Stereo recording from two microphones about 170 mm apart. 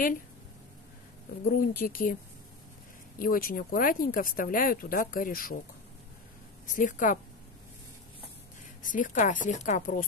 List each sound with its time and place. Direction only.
1.4 s speech: 55° left (ahead or behind)
3.2 s speech: 55° left (ahead or behind)
6.6 s a woman's voice: 50° left (ahead or behind)
8.8 s a woman's voice: 50° left (ahead or behind)